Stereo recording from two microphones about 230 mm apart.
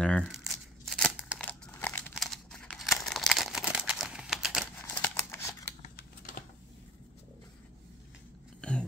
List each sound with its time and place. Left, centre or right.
0.0 s crumpling: centre
4.8 s scissors: centre
5.8 s typing: left
8.5 s a sound: centre